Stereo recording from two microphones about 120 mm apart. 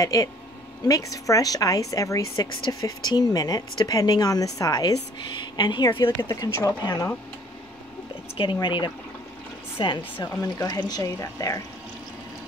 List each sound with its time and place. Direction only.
0.0 s a woman's voice: 30° left (ahead or behind)
6.2 s a woman's voice: 30° left (ahead or behind)
8.4 s a woman's voice: 40° left (ahead or behind)
10.6 s speech: 30° left (ahead or behind)